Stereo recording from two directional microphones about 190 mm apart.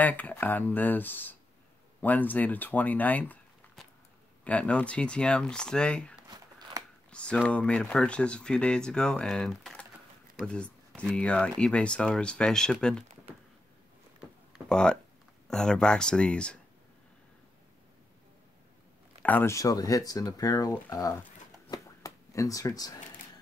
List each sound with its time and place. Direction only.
0.0 s speech: 10° left (ahead or behind)
6.2 s a sound: 20° right (ahead or behind)
7.1 s speech: 5° left (ahead or behind)
14.7 s speech: 5° left (ahead or behind)
19.2 s speech: 10° left (ahead or behind)
21.6 s a sound: 15° left (ahead or behind)